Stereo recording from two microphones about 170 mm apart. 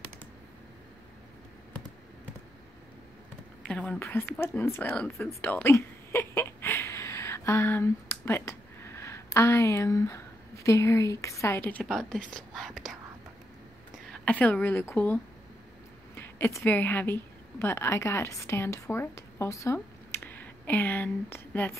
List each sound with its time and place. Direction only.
3.6 s a woman's voice: 5° left (ahead or behind)
5.4 s a sound: 10° left (ahead or behind)
12.4 s whispering: centre (ahead or behind)
14.2 s a woman's voice: 10° left (ahead or behind)
16.2 s a woman's voice: 15° left (ahead or behind)